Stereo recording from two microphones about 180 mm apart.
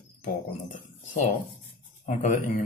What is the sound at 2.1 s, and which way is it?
Speech, 40° left (ahead or behind).